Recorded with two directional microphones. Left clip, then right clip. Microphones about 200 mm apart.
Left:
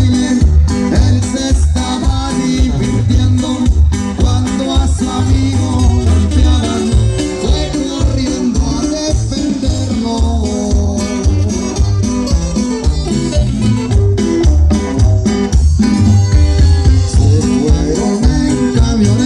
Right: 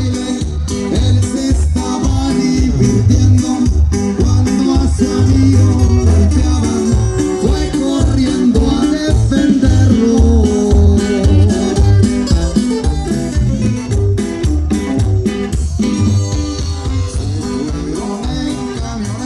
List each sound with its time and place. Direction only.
0.7 s music: 30° left (ahead or behind)
2.3 s music: 25° right (ahead or behind)
5.0 s music: 30° right (ahead or behind)
6.8 s music: 20° left (ahead or behind)
7.7 s music: 35° right (ahead or behind)
9.0 s music: 5° left (ahead or behind)
10.6 s music: 10° left (ahead or behind)
12.5 s music: 35° right (ahead or behind)
14.2 s music: 25° left (ahead or behind)
15.8 s music: 30° left (ahead or behind)
17.4 s music: 50° left (ahead or behind)